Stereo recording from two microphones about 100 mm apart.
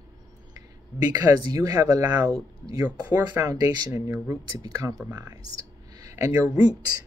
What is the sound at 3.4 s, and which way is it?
Speech, 35° right (ahead or behind).